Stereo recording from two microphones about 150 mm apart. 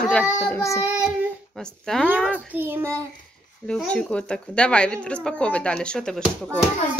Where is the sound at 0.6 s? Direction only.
20° left (ahead or behind).